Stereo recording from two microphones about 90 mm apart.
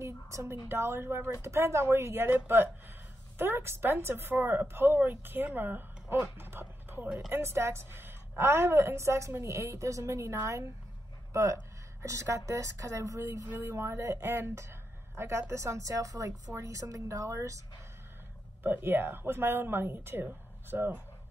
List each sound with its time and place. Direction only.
0.0 s a woman's voice: 35° right (ahead or behind)
7.1 s a woman's voice: 10° right (ahead or behind)
7.3 s speech: 30° right (ahead or behind)
12.0 s speech: 35° right (ahead or behind)
18.6 s a woman's voice: 25° right (ahead or behind)